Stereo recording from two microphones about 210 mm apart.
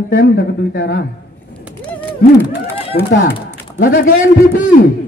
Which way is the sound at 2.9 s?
45° left (ahead or behind).